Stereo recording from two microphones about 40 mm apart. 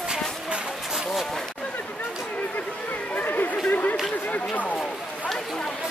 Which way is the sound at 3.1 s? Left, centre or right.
Left.